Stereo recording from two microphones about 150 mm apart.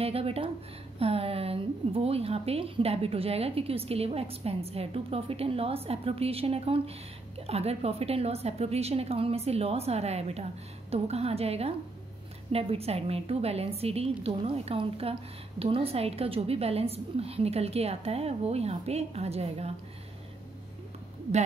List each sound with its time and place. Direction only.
0.0 s a woman's voice: 40° right (ahead or behind)